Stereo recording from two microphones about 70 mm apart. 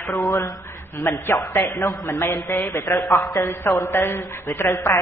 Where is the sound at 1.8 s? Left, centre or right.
Left.